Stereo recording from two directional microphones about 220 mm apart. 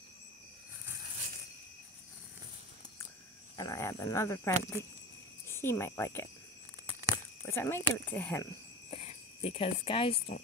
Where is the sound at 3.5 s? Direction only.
15° left (ahead or behind).